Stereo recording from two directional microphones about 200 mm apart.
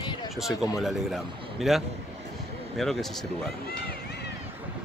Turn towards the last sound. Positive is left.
turn(degrees=0)  # may be behind; listen again after turning